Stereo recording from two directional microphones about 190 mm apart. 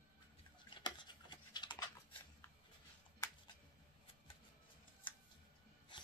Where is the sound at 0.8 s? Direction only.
25° left (ahead or behind).